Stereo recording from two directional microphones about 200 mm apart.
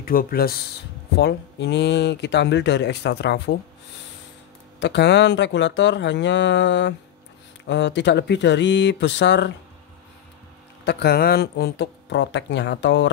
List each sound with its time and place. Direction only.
0.0 s speech: 45° left (ahead or behind)
1.1 s speech: 55° left (ahead or behind)
4.7 s speech: 60° left (ahead or behind)
10.9 s speech: 55° left (ahead or behind)